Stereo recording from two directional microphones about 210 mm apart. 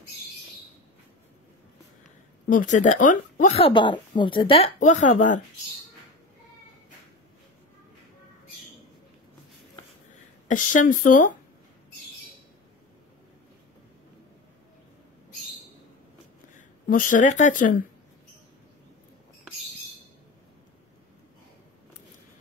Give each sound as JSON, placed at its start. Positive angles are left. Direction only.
{"t": 2.5, "sound": "a woman's voice", "side_deg": 35}
{"t": 4.7, "sound": "speech", "side_deg": 35}
{"t": 10.5, "sound": "speech", "side_deg": 40}
{"t": 16.5, "sound": "speech", "side_deg": 40}